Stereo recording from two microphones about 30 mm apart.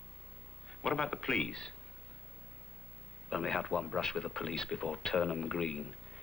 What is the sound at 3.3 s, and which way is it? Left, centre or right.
Speech, centre.